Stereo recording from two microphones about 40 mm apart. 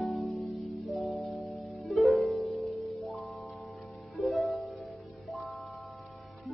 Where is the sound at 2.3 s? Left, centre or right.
Left.